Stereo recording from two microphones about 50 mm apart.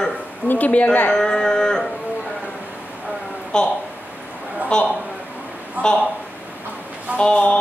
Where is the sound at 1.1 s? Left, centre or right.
Centre.